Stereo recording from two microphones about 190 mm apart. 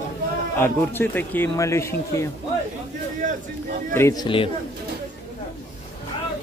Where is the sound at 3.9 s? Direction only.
15° left (ahead or behind).